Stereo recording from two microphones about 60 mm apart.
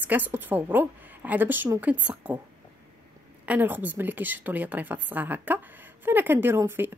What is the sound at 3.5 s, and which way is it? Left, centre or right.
A woman's voice, right.